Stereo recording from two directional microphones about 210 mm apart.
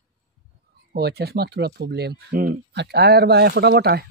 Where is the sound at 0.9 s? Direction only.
50° right (ahead or behind).